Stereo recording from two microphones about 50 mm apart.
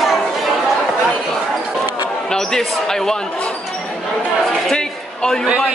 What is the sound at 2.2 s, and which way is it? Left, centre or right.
A man's voice, centre.